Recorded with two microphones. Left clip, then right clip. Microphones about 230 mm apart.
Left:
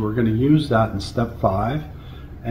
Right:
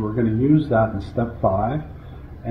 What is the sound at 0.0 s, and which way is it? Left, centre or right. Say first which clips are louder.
Speech: left 1 dB; centre.